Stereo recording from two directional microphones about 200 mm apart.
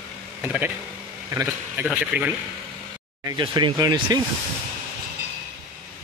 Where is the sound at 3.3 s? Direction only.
20° right (ahead or behind).